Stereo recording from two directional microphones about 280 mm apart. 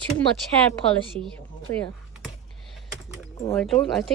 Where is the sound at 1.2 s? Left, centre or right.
Centre.